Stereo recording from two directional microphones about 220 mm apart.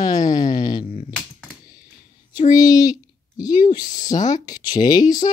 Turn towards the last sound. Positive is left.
turn(degrees=15)  # may be behind; listen again after turning